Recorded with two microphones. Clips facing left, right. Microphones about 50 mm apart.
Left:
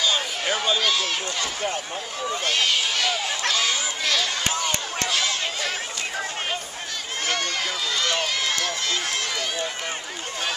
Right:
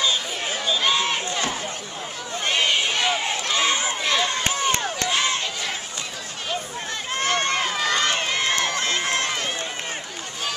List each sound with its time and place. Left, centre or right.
0.1 s run: left
0.7 s speech: right
4.3 s crowd: right
5.0 s a sound: right
7.2 s run: right